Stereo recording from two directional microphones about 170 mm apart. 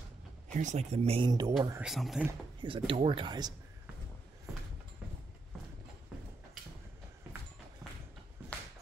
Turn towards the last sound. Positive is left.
turn(degrees=-20)  # may be behind; listen again after turning